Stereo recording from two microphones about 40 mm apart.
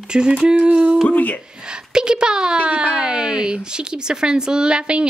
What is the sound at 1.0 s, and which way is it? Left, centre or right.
Speech, left.